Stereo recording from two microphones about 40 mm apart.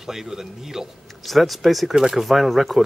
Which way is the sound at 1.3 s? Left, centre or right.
Centre.